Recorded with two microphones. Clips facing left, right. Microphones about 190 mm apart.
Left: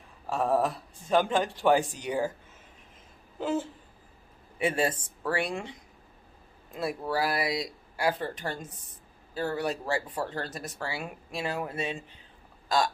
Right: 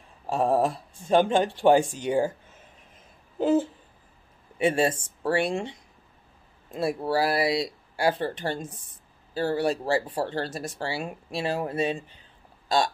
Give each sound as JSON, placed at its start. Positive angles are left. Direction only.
{"t": 0.3, "sound": "speech", "side_deg": -30}
{"t": 4.6, "sound": "speech", "side_deg": -25}